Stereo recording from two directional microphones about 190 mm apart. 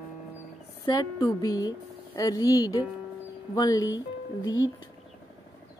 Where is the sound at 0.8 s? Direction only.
20° left (ahead or behind).